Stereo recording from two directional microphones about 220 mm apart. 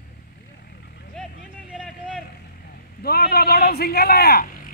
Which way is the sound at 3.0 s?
45° left (ahead or behind).